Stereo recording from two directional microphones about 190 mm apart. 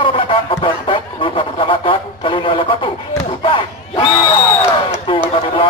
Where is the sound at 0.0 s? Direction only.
30° left (ahead or behind).